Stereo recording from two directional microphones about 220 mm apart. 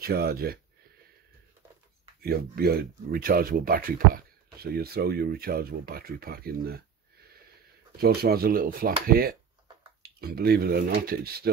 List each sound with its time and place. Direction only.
0.0 s speech: 45° right (ahead or behind)
2.2 s speech: 45° right (ahead or behind)
8.0 s speech: 45° right (ahead or behind)